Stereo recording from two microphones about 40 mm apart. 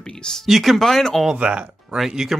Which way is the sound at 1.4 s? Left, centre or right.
Right.